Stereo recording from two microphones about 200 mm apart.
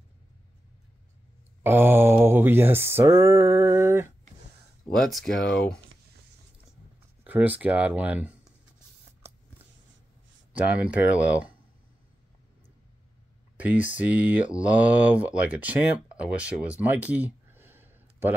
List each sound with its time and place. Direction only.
1.6 s mantra: 10° right (ahead or behind)
4.8 s speech: centre (ahead or behind)
7.2 s speech: 10° right (ahead or behind)
10.5 s speech: 5° right (ahead or behind)
13.6 s speech: 10° right (ahead or behind)